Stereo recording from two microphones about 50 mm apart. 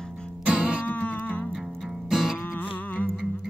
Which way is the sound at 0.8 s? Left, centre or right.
Left.